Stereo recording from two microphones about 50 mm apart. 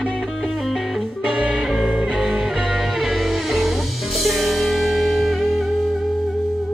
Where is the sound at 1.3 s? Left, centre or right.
Right.